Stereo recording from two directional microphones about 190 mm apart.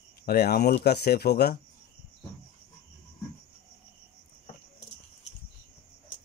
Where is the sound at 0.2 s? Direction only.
55° left (ahead or behind).